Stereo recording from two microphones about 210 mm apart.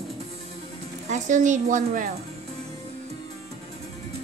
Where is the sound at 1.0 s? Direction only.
35° right (ahead or behind).